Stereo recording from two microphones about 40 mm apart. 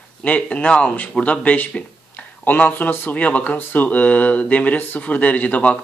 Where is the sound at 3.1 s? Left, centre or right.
Left.